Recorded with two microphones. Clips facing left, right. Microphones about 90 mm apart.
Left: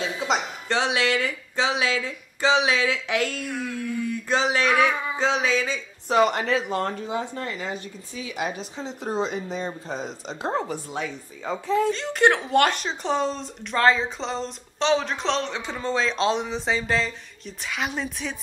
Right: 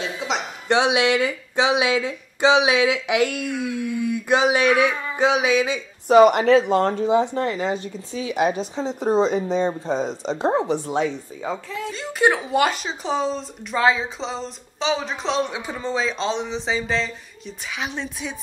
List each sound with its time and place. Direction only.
0.7 s speech: 15° right (ahead or behind)
6.7 s speech: 25° right (ahead or behind)
8.4 s speech: 20° right (ahead or behind)
10.9 s speech: 25° right (ahead or behind)
11.4 s speech: 5° right (ahead or behind)